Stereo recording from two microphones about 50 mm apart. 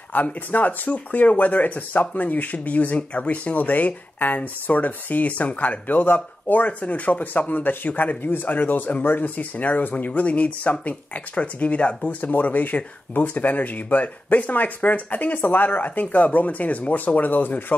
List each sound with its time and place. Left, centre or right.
0.1 s speech: left